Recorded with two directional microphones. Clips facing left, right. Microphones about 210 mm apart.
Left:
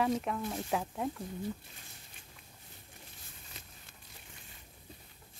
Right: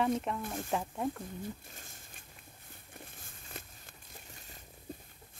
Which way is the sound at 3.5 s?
50° right (ahead or behind).